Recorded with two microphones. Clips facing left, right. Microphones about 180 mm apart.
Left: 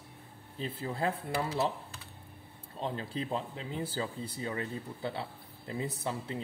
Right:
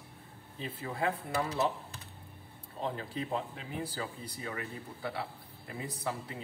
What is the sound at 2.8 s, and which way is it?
Speech, 25° left (ahead or behind).